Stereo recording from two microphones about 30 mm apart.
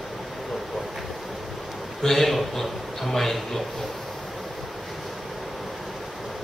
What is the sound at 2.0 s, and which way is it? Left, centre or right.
A man's voice, centre.